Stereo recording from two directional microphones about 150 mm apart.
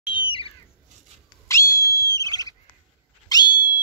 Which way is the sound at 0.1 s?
35° left (ahead or behind).